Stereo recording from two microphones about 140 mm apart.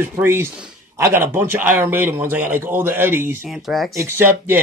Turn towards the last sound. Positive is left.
turn(degrees=-15)  # may be behind; listen again after turning